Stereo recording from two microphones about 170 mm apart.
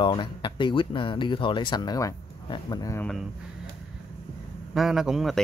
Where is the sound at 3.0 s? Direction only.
5° left (ahead or behind).